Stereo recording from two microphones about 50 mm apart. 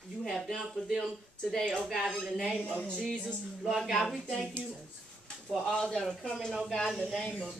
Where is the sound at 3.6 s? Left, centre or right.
Centre.